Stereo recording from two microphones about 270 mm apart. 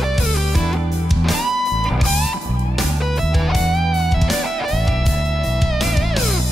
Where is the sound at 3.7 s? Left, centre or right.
Centre.